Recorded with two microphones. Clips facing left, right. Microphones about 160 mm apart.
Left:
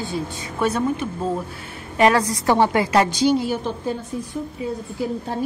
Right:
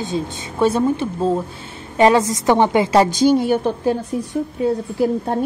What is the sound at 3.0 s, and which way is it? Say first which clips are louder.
A woman's voice: right 4 dB; 50° right (ahead or behind).